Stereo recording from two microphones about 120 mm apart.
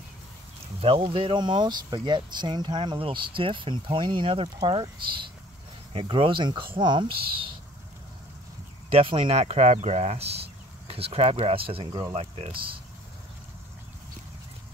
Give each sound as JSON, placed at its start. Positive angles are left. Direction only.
{"t": 0.7, "sound": "speech", "side_deg": -50}
{"t": 5.9, "sound": "speech", "side_deg": -50}
{"t": 8.9, "sound": "speech", "side_deg": -45}
{"t": 9.4, "sound": "speech", "side_deg": -65}